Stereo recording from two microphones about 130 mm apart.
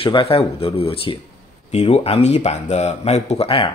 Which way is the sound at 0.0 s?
45° left (ahead or behind).